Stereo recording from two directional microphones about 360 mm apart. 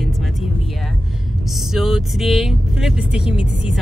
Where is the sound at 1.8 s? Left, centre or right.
Centre.